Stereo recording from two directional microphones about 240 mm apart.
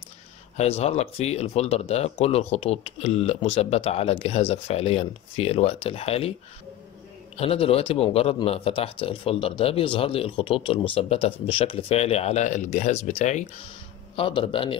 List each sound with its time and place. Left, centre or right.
0.6 s speech: left
7.3 s speech: left